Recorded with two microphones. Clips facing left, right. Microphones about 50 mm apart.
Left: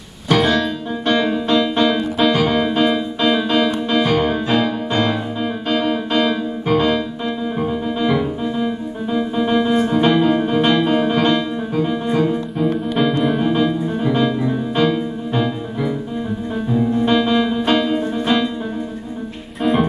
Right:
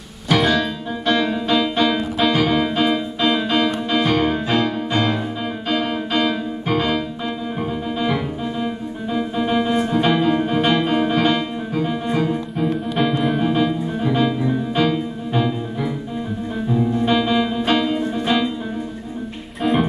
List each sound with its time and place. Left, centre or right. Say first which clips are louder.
0.3 s music: left 2 dB; centre